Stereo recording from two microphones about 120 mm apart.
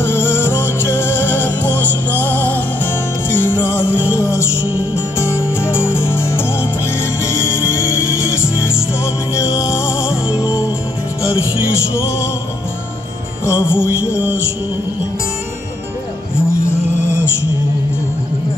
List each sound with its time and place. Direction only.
0.0 s music: 20° left (ahead or behind)
3.9 s music: 10° right (ahead or behind)
4.2 s music: 25° left (ahead or behind)
12.0 s music: 25° left (ahead or behind)
13.5 s music: 20° left (ahead or behind)